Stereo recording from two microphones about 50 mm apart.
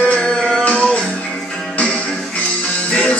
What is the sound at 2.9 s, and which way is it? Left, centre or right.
Music, left.